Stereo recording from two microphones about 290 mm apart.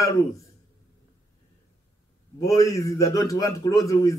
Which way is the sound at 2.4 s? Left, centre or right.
Centre.